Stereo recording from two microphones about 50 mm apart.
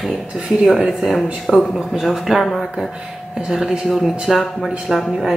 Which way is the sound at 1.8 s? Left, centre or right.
Centre.